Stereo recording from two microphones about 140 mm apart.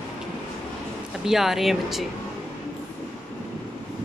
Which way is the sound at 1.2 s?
Centre (ahead or behind).